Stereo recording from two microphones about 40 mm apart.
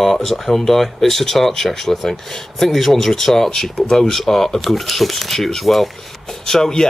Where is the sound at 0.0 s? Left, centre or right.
Centre.